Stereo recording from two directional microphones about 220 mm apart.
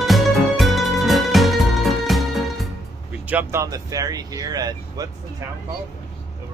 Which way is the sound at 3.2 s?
10° right (ahead or behind).